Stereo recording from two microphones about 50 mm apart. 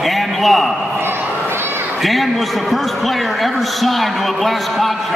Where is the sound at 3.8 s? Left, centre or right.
Centre.